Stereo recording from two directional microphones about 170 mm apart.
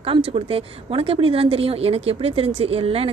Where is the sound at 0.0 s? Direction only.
35° right (ahead or behind).